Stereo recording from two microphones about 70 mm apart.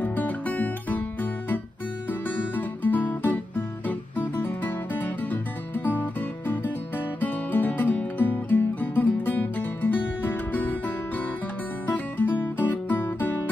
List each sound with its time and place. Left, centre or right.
0.0 s guitar: left
2.2 s music: left
11.9 s music: left